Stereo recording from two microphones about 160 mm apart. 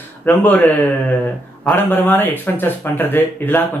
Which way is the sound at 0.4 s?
10° left (ahead or behind).